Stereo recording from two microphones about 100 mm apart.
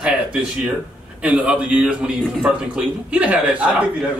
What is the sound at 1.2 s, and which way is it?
Speech, 10° right (ahead or behind).